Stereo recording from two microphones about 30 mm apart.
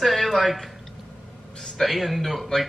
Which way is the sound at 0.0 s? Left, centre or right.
Centre.